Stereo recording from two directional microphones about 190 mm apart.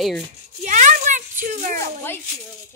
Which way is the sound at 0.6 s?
40° right (ahead or behind).